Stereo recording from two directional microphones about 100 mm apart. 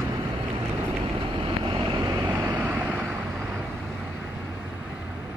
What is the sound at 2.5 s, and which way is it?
Vehicle, 15° right (ahead or behind).